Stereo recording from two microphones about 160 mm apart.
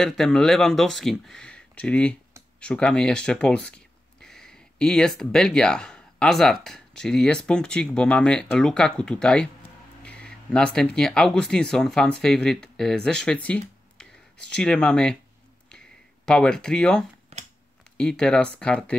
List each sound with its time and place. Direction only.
0.0 s speech: centre (ahead or behind)
16.3 s speech: 5° left (ahead or behind)
17.3 s a sound: 40° right (ahead or behind)
17.9 s speech: 5° left (ahead or behind)